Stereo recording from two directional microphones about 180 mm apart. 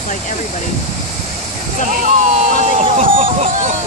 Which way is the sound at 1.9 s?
45° right (ahead or behind).